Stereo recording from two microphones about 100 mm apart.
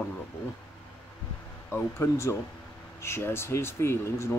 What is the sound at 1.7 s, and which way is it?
Speech, 25° left (ahead or behind).